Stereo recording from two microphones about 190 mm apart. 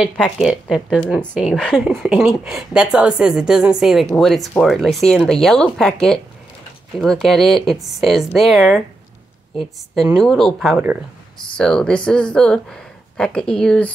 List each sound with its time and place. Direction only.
0.0 s a woman's voice: centre (ahead or behind)